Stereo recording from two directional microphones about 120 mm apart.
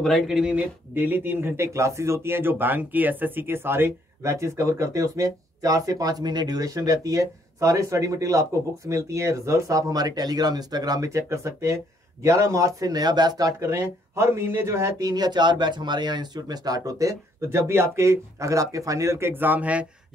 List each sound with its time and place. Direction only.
0.0 s speech: centre (ahead or behind)